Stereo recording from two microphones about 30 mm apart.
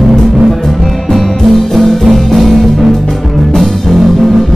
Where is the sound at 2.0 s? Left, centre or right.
Centre.